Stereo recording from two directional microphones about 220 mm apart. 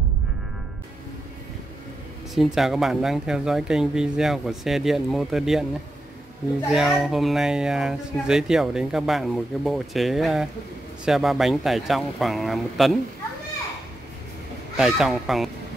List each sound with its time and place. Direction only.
2.3 s speech: centre (ahead or behind)
6.7 s speech: centre (ahead or behind)
14.8 s speech: centre (ahead or behind)